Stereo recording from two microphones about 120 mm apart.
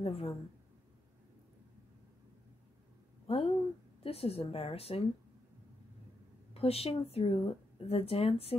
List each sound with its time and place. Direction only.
0.0 s a woman's voice: 55° left (ahead or behind)
3.3 s speech: 55° left (ahead or behind)
6.5 s speech: 55° left (ahead or behind)